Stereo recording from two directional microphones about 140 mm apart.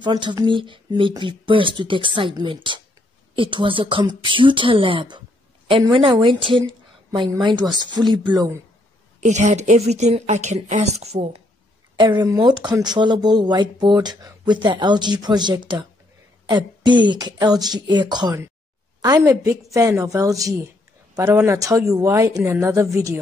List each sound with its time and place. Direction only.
0.0 s speech: 35° right (ahead or behind)
9.2 s speech: 60° right (ahead or behind)
12.0 s a woman's voice: 30° right (ahead or behind)